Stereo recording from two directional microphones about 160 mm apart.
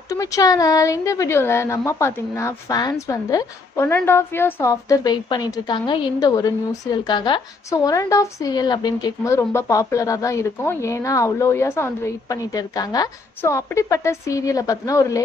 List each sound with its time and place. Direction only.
0.1 s speech: 20° left (ahead or behind)